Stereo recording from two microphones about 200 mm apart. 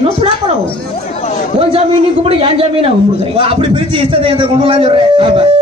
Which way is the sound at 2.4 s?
30° right (ahead or behind).